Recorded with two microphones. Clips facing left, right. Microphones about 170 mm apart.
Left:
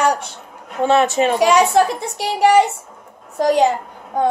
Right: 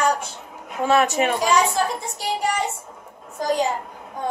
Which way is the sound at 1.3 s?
70° left (ahead or behind).